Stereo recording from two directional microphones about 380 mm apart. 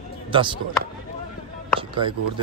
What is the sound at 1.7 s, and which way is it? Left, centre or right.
Music, centre.